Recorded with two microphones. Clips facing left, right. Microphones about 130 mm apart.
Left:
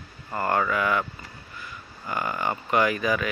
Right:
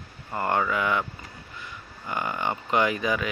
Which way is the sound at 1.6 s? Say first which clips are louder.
Left 1 dB; 20° right (ahead or behind).